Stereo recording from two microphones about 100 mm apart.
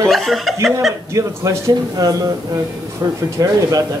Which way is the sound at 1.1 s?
35° right (ahead or behind).